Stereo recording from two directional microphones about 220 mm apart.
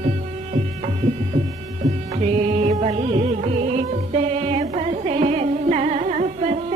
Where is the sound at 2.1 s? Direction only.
30° right (ahead or behind).